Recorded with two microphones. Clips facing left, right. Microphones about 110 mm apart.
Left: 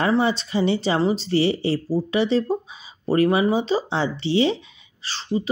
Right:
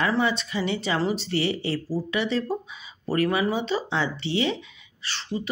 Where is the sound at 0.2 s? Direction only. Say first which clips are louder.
Left 4 dB; 30° left (ahead or behind).